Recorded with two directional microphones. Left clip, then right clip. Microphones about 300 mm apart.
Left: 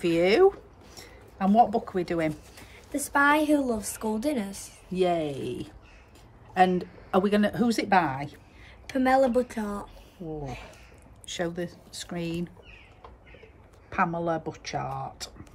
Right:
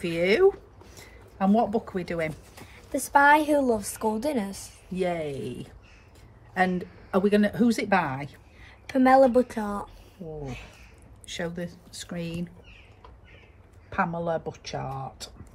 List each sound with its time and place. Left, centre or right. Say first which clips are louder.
0.0 s speech: left 1 dB; centre
0.9 s a sound: right 2 dB; centre
1.9 s speech: left 2 dB; centre
2.5 s a woman's voice: right 3 dB; centre
4.9 s speech: left 3 dB; centre
8.6 s a woman's voice: right 4 dB; centre
11.2 s speech: left 2 dB; centre
14.1 s speech: even; centre